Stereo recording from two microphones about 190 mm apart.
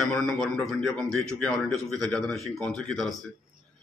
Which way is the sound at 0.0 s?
Centre (ahead or behind).